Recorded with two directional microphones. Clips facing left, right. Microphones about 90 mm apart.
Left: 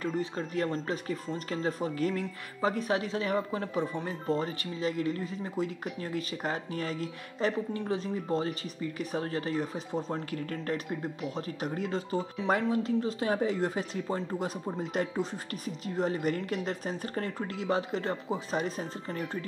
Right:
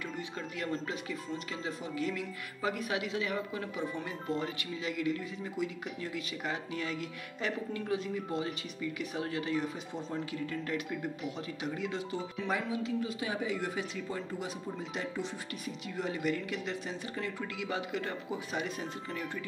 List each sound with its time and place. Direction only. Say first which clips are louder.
0.0 s speech: left 7 dB; 35° left (ahead or behind)
10.9 s speech: left 2 dB; 35° left (ahead or behind)